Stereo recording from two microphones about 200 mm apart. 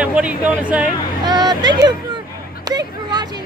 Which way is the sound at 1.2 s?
20° right (ahead or behind).